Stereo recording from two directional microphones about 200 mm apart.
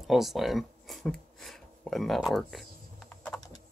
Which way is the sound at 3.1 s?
5° left (ahead or behind).